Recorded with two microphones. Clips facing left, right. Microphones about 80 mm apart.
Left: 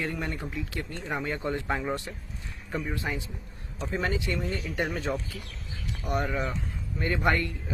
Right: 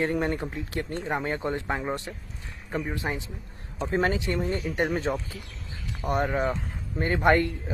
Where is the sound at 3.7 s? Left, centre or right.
Right.